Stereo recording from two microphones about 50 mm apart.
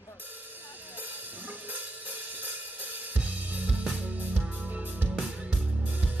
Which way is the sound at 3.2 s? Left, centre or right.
Right.